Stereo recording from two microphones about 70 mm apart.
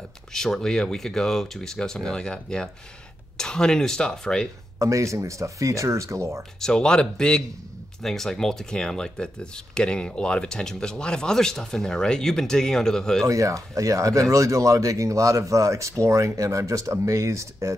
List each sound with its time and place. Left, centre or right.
0.3 s speech: centre
4.7 s speech: right
6.6 s speech: centre
13.3 s speech: right